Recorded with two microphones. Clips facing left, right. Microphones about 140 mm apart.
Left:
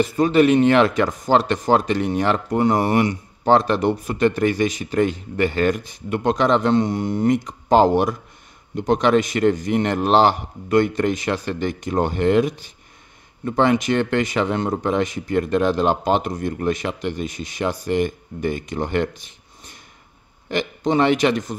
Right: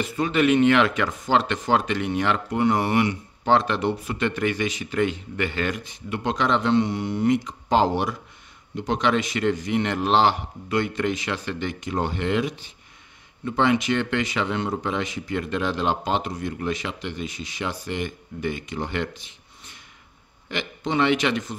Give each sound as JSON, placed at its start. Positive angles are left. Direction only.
{"t": 0.0, "sound": "speech", "side_deg": 40}